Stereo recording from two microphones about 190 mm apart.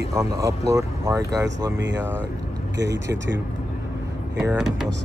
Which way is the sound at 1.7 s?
70° right (ahead or behind).